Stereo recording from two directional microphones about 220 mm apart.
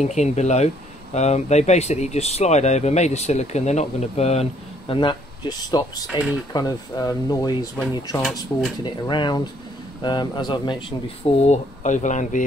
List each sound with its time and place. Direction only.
0.0 s speech: 30° left (ahead or behind)
8.2 s speech: centre (ahead or behind)
8.8 s speech: 20° left (ahead or behind)